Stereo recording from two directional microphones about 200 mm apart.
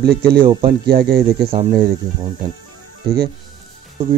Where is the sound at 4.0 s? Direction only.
25° right (ahead or behind).